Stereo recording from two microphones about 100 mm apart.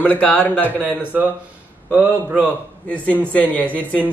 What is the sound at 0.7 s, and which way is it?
A man's voice, 15° right (ahead or behind).